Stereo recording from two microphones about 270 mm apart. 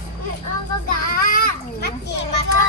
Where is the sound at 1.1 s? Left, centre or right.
Left.